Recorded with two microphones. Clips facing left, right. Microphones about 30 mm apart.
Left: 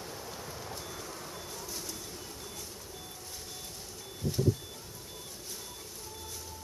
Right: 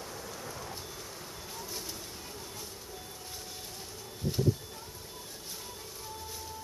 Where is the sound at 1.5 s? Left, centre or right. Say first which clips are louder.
Right 3 dB; centre.